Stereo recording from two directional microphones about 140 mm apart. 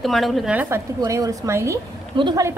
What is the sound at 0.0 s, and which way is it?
Speech, centre (ahead or behind).